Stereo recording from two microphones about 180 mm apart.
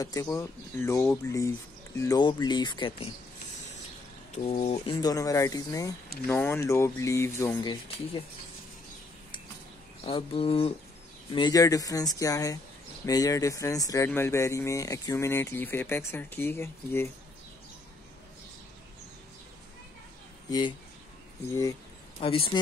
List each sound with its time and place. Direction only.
0.0 s speech: 20° left (ahead or behind)
4.5 s speech: 35° left (ahead or behind)
4.9 s speech: 20° left (ahead or behind)
10.0 s speech: 30° left (ahead or behind)
11.3 s speech: 20° left (ahead or behind)
22.2 s speech: 30° left (ahead or behind)